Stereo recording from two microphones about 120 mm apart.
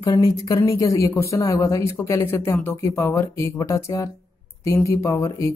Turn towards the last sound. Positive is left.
turn(degrees=25)  # may be behind; listen again after turning